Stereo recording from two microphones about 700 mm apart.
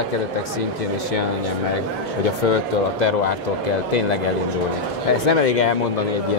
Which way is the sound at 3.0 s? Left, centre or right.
Left.